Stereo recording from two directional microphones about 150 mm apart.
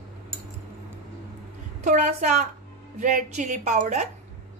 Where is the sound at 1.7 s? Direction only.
55° right (ahead or behind).